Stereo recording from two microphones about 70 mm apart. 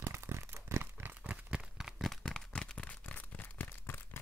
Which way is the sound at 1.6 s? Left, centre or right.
Centre.